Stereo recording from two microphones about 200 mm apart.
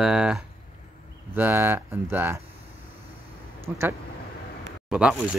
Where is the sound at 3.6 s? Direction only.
10° right (ahead or behind).